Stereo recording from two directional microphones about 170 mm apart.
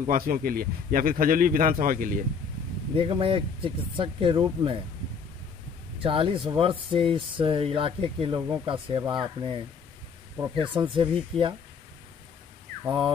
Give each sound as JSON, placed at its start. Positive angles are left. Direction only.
{"t": 0.1, "sound": "speech", "side_deg": -55}
{"t": 3.0, "sound": "speech", "side_deg": -30}
{"t": 6.0, "sound": "speech", "side_deg": -30}
{"t": 10.6, "sound": "speech", "side_deg": -30}
{"t": 12.8, "sound": "speech", "side_deg": -25}